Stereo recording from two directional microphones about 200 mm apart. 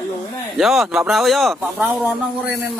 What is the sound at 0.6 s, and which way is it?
Speech, centre (ahead or behind).